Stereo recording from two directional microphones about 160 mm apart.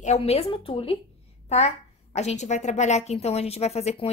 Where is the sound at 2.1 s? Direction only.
45° left (ahead or behind).